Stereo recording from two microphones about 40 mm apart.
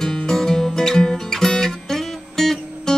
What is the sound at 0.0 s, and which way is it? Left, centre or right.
Music, centre.